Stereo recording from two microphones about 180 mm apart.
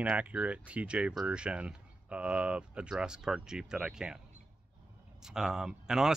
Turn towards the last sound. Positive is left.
turn(degrees=-5)  # may be behind; listen again after turning